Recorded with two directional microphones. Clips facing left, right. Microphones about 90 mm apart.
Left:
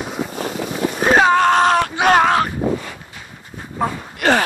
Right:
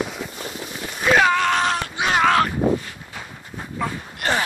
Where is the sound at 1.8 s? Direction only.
65° left (ahead or behind).